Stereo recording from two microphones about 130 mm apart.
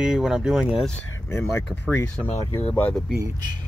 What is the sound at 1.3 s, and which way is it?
Speech, 20° left (ahead or behind).